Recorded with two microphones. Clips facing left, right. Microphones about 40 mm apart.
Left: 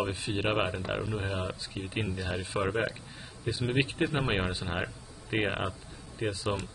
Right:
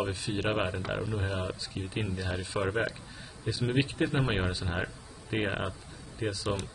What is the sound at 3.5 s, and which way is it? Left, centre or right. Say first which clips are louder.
Speech: even; left.